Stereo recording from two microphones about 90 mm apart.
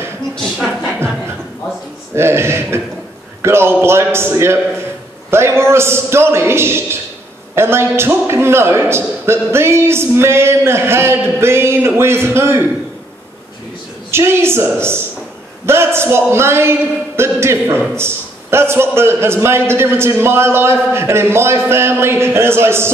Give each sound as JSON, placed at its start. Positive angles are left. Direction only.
{"t": 2.1, "sound": "a man's voice", "side_deg": -30}
{"t": 14.1, "sound": "a man's voice", "side_deg": -30}